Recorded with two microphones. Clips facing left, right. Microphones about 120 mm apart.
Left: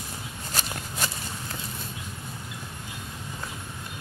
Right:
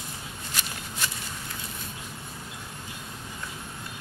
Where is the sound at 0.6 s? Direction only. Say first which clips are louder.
Left 4 dB; 40° left (ahead or behind).